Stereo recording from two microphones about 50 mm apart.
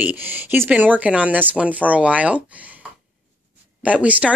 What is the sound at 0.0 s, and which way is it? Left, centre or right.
Speech, right.